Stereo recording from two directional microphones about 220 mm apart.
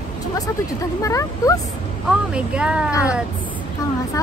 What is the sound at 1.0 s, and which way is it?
Speech, 15° left (ahead or behind).